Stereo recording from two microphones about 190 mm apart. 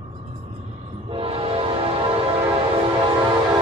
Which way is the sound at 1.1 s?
30° right (ahead or behind).